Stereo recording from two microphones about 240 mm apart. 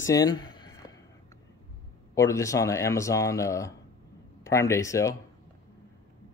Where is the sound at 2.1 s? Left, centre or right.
Centre.